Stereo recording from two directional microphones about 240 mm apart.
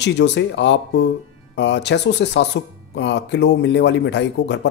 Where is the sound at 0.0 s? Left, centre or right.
Left.